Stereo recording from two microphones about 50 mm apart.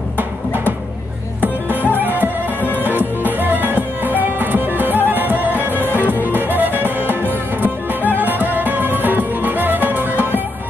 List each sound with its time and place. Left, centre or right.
2.0 s music: right
5.8 s music: left
6.2 s music: right